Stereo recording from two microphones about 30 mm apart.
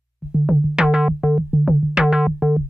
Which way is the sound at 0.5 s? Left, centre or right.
Right.